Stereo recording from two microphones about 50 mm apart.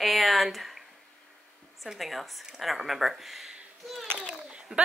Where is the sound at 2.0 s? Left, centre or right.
Centre.